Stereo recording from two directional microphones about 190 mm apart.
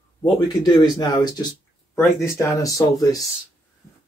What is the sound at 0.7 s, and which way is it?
Speech, 20° left (ahead or behind).